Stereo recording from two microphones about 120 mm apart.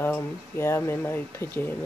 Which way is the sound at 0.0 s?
20° left (ahead or behind).